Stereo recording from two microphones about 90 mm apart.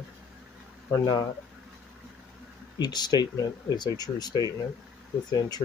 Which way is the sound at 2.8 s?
50° left (ahead or behind).